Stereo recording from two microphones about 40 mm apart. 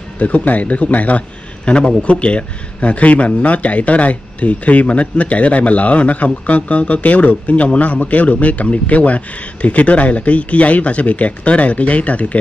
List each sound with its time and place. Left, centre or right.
0.2 s a man's voice: left
1.7 s a man's voice: left